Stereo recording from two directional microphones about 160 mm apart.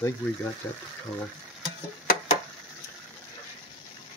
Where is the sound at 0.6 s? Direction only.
15° left (ahead or behind).